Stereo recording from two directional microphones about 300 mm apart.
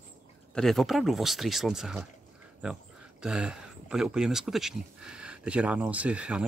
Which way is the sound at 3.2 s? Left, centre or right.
Centre.